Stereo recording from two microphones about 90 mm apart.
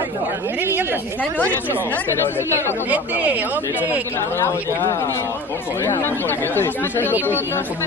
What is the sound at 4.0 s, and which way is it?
Speech, 25° left (ahead or behind).